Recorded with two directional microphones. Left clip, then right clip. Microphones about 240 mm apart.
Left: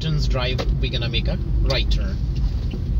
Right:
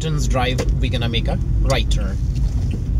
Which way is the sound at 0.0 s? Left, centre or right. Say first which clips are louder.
Right 4 dB; centre.